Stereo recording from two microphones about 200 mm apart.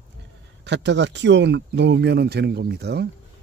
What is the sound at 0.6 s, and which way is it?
Speech, 60° right (ahead or behind).